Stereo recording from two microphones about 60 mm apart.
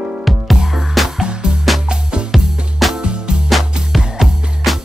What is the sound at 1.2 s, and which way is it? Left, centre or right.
Music, centre.